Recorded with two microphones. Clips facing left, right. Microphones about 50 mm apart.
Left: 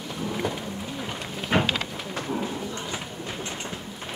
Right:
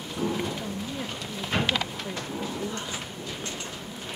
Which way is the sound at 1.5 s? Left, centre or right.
Left.